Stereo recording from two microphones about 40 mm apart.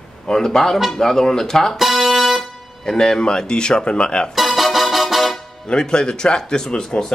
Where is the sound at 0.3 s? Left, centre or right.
Centre.